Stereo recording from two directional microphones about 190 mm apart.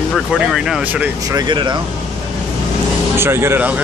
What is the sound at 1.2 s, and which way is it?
Speech, 20° right (ahead or behind).